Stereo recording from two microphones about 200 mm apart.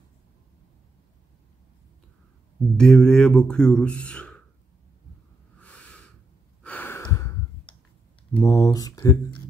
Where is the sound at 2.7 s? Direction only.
5° left (ahead or behind).